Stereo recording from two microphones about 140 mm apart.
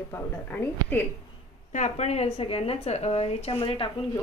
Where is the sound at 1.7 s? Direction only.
55° left (ahead or behind).